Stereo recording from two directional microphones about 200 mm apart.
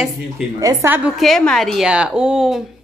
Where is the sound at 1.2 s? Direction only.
Centre (ahead or behind).